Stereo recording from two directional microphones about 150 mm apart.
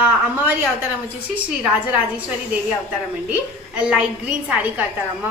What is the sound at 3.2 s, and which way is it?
A woman's voice, 5° right (ahead or behind).